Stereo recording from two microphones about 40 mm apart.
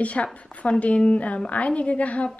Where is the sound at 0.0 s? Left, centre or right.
Left.